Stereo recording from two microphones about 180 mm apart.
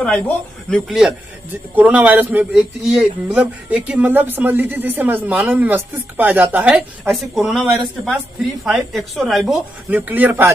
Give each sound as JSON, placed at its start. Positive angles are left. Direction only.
{"t": 0.7, "sound": "a woman's voice", "side_deg": 0}